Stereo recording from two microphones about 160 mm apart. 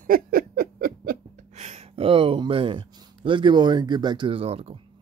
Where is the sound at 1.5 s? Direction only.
45° right (ahead or behind).